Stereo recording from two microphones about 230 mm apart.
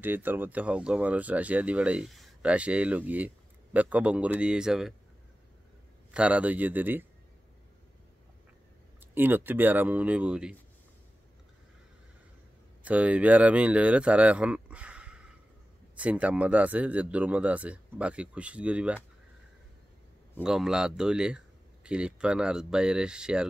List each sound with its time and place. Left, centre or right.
0.0 s speech: centre
6.1 s speech: centre
9.1 s speech: centre
12.8 s speech: centre
20.4 s speech: centre